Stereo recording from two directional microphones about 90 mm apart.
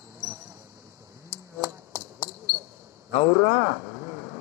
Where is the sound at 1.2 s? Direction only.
25° right (ahead or behind).